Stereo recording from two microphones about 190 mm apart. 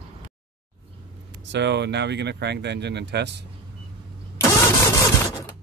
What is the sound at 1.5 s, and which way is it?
Speech, 65° right (ahead or behind).